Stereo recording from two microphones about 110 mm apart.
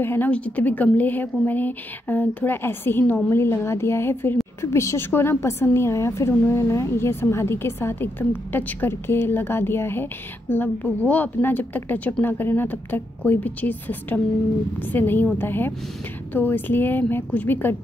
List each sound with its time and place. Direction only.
0.0 s a woman's voice: 20° left (ahead or behind)